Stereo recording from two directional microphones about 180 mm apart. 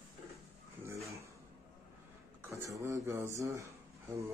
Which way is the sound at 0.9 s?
15° right (ahead or behind).